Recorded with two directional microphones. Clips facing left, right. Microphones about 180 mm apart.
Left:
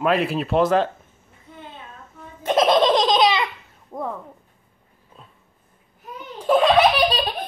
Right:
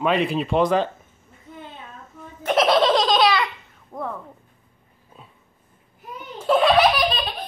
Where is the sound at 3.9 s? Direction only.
15° left (ahead or behind).